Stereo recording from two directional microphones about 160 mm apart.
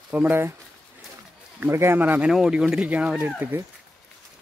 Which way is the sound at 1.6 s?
15° right (ahead or behind).